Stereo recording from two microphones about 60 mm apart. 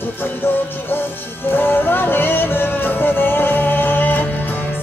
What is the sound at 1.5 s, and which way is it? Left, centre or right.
Music, left.